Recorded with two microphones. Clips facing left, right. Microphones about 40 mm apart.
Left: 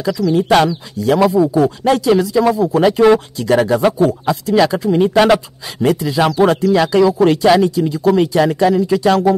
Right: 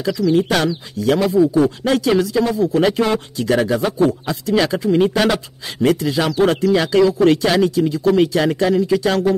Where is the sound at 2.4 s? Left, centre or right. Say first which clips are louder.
Left 3 dB; left.